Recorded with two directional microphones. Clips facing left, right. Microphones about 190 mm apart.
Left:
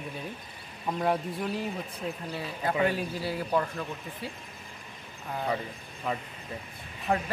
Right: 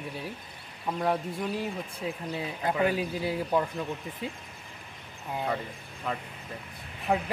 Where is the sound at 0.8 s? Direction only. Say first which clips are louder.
Even; centre (ahead or behind).